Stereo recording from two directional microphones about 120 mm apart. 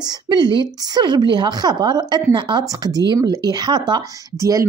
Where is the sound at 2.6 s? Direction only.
30° right (ahead or behind).